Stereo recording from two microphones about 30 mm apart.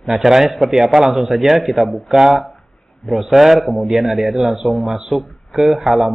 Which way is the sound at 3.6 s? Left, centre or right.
Centre.